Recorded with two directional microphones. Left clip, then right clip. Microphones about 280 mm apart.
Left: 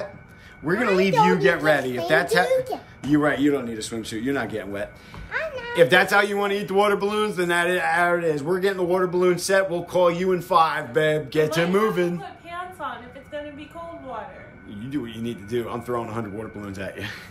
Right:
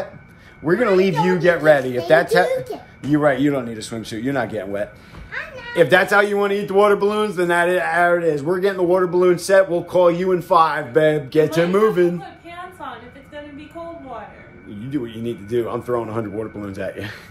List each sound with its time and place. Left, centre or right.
0.7 s a man's voice: centre
2.4 s speech: centre
3.1 s a man's voice: centre
5.3 s speech: left
5.7 s speech: centre
14.8 s speech: centre